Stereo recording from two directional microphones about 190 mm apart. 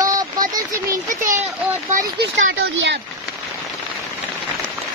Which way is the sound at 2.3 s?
80° right.